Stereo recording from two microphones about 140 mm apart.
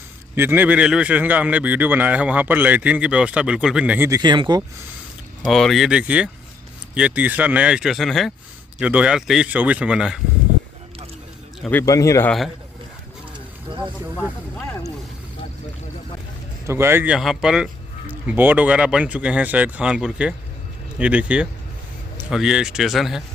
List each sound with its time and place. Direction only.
0.4 s speech: 15° right (ahead or behind)
4.1 s speech: 30° right (ahead or behind)
5.4 s a man's voice: centre (ahead or behind)
11.7 s speech: 25° left (ahead or behind)
16.6 s a man's voice: 20° right (ahead or behind); by 23.2 s centre (ahead or behind)